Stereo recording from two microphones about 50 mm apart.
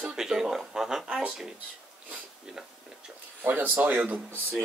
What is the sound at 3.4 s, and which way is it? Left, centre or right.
Speech, right.